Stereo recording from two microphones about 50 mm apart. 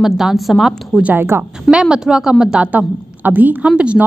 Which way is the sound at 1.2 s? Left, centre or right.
Right.